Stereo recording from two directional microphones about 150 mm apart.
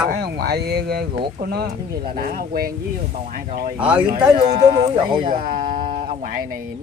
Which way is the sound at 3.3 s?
70° right (ahead or behind).